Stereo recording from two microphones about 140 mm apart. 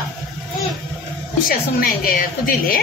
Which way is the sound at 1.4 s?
85° left.